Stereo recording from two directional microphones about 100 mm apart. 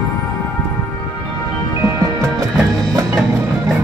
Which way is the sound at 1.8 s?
30° right (ahead or behind).